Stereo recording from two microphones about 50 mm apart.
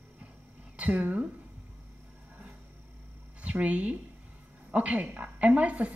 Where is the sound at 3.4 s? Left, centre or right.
Right.